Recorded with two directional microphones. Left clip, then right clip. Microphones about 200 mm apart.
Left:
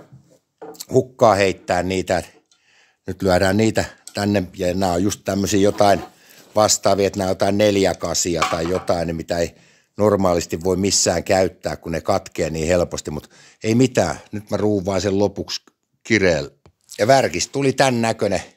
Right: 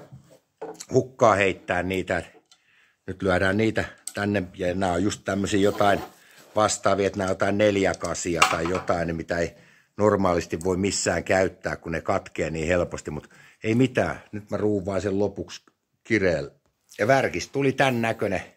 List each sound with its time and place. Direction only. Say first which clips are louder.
0.7 s speech: left 5 dB; 30° left (ahead or behind)